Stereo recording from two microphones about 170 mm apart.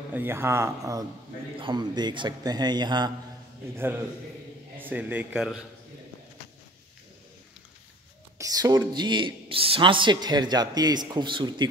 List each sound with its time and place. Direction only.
0.1 s speech: 15° right (ahead or behind)
3.7 s speech: 15° right (ahead or behind)
8.4 s speech: 20° right (ahead or behind)